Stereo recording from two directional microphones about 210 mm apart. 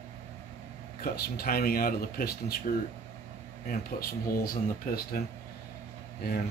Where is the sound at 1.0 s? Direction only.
45° left (ahead or behind).